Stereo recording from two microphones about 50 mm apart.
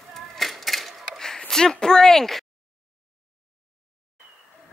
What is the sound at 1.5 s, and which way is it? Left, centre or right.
Speech, centre.